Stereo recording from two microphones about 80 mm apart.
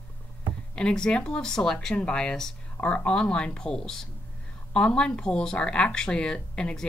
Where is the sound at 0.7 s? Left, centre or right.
Centre.